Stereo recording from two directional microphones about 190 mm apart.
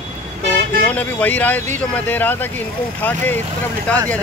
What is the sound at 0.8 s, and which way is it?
Speech, 10° left (ahead or behind).